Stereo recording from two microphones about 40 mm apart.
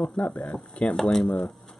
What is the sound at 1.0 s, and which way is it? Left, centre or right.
Speech, centre.